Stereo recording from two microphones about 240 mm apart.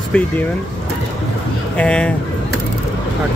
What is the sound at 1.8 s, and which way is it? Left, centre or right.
Speech, centre.